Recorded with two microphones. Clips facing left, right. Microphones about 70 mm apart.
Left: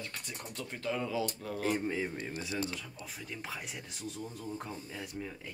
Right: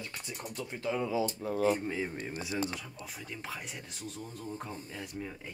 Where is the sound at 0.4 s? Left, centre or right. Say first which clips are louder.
Right 4 dB; centre.